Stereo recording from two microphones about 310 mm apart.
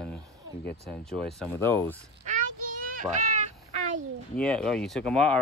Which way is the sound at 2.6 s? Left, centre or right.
Right.